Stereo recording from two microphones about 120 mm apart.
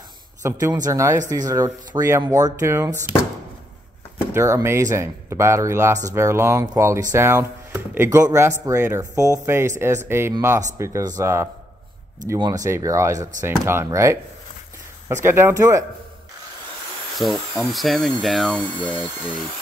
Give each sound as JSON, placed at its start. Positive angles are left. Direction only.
{"t": 0.4, "sound": "speech", "side_deg": -20}
{"t": 4.3, "sound": "speech", "side_deg": -25}
{"t": 17.2, "sound": "speech", "side_deg": 0}